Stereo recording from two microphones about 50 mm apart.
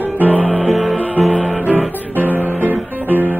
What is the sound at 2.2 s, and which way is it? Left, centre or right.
Music, right.